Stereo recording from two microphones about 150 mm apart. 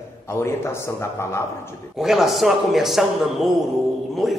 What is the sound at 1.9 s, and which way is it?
A man's voice, centre (ahead or behind).